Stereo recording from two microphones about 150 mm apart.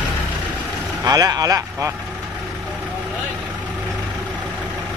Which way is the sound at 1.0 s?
25° right (ahead or behind).